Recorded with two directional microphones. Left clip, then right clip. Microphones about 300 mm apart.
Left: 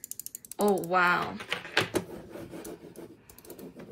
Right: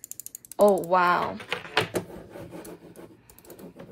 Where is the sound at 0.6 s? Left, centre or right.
Centre.